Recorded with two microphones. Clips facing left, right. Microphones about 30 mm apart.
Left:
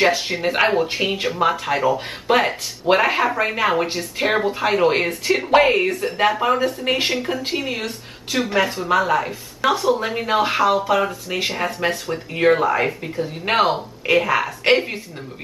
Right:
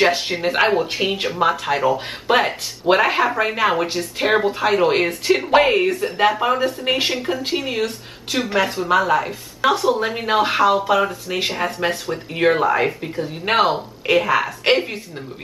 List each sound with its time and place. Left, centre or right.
0.3 s speech: centre